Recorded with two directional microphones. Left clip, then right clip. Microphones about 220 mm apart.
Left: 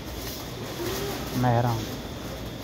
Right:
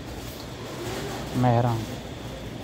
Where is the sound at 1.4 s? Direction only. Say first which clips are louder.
Right 1 dB; 15° right (ahead or behind).